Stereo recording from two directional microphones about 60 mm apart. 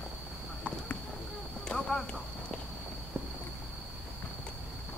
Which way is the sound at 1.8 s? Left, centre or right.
Centre.